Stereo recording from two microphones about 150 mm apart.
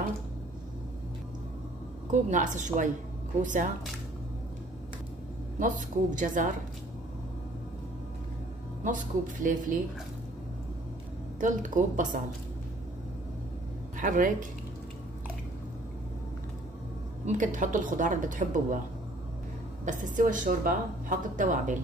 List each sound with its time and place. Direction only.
2.0 s a woman's voice: 55° right (ahead or behind)
5.6 s a woman's voice: 60° right (ahead or behind)
8.8 s a woman's voice: 60° right (ahead or behind)
11.3 s a woman's voice: 60° right (ahead or behind)
13.9 s speech: 60° right (ahead or behind)
17.3 s a woman's voice: 60° right (ahead or behind)
19.8 s a woman's voice: 60° right (ahead or behind)